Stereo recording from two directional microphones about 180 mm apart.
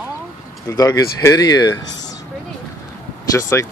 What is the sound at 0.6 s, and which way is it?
Speech, 20° left (ahead or behind).